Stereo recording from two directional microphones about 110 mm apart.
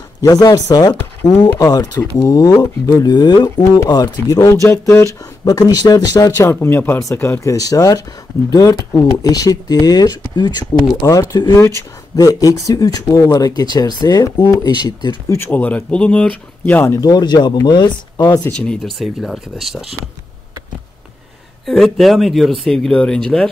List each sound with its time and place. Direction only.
0.2 s speech: 30° left (ahead or behind)
4.4 s speech: 25° left (ahead or behind)
6.3 s speech: 20° left (ahead or behind); by 14.5 s 40° left (ahead or behind)
15.2 s speech: 20° left (ahead or behind)
16.9 s speech: 35° left (ahead or behind)
18.5 s speech: 10° left (ahead or behind)
21.6 s speech: centre (ahead or behind)